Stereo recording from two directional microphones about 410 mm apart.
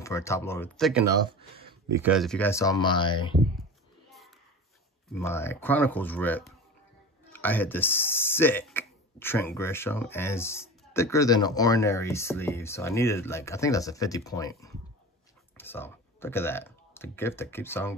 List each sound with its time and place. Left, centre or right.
0.0 s speech: centre
5.1 s speech: centre